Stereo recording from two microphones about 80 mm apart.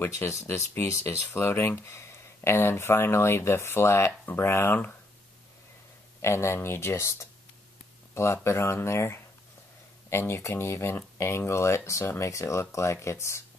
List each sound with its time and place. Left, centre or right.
0.3 s speech: left
6.2 s speech: left